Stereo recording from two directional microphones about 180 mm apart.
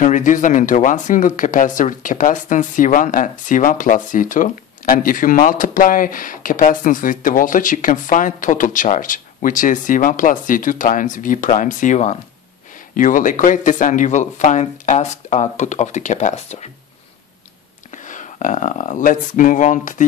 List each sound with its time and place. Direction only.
0.0 s speech: 45° left (ahead or behind)
17.9 s speech: 45° left (ahead or behind)